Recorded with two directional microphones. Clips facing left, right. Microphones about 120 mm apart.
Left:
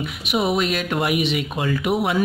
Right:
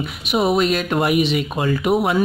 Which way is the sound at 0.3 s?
35° right (ahead or behind).